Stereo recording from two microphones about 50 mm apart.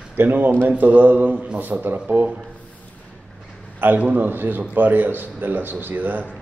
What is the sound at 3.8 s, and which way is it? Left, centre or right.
A man's voice, right.